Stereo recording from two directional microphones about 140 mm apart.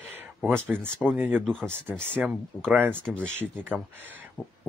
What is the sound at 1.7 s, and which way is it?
Speech, 15° right (ahead or behind).